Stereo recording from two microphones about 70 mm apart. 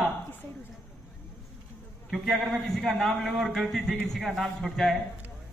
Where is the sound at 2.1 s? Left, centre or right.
Centre.